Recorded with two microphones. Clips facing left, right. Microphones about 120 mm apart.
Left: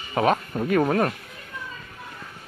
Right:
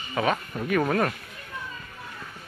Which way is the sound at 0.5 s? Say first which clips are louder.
Left 3 dB; 25° left (ahead or behind).